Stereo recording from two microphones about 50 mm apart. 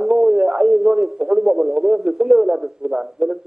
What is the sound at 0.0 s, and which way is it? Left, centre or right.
A man's voice, centre.